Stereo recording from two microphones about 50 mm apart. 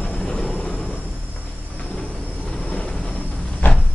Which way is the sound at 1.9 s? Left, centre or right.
Centre.